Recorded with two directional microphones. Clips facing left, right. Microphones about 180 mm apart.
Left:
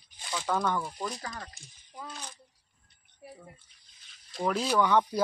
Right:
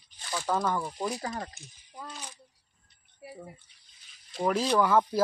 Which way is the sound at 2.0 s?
5° right (ahead or behind).